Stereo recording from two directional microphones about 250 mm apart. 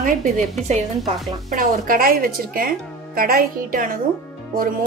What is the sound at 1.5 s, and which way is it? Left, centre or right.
Speech, right.